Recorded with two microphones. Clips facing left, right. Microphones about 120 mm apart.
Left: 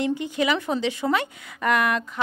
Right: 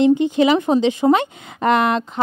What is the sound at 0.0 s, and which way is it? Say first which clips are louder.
Speech: right 10 dB; 25° right (ahead or behind).